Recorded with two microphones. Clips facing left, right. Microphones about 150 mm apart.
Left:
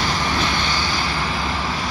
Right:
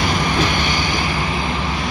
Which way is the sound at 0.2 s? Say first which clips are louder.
Right 3 dB; 15° right (ahead or behind).